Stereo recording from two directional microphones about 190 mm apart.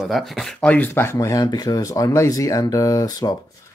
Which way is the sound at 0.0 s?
Centre (ahead or behind).